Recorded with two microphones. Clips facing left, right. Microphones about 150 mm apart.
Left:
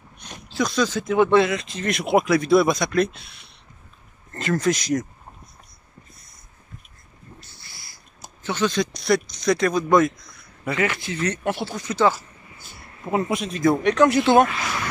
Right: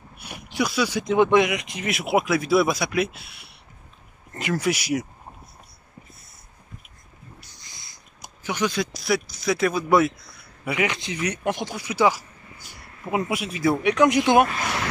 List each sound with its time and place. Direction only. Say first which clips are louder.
0.2 s speech: left 1 dB; 10° right (ahead or behind)
7.4 s speech: left 1 dB; 15° right (ahead or behind)